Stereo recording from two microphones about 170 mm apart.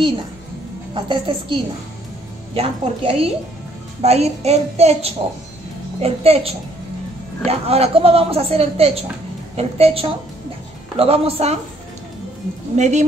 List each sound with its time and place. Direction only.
0.9 s a woman's voice: 30° right (ahead or behind)
12.7 s a woman's voice: 45° right (ahead or behind)